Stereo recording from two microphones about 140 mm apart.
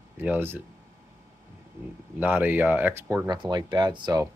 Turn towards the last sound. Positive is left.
turn(degrees=-30)  # may be behind; listen again after turning